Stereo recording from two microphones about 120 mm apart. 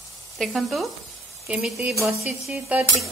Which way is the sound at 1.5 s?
10° right (ahead or behind).